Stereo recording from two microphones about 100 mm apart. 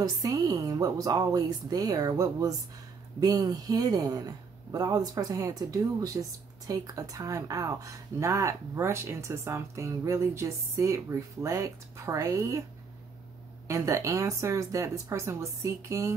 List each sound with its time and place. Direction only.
0.0 s a woman's voice: 35° right (ahead or behind)
13.7 s a woman's voice: 30° right (ahead or behind)